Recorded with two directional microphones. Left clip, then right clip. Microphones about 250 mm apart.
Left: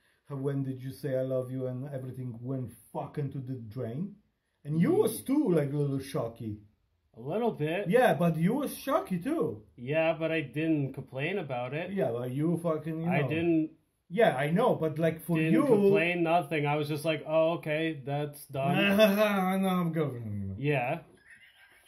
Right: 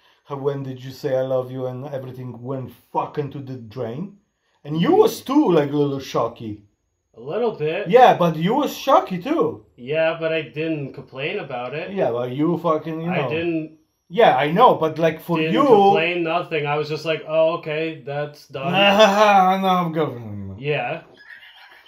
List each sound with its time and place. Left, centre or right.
0.3 s speech: centre
7.2 s speech: left
7.8 s speech: centre
9.8 s speech: left
11.9 s speech: centre
14.1 s speech: centre
15.9 s speech: left
18.7 s speech: centre
20.6 s speech: left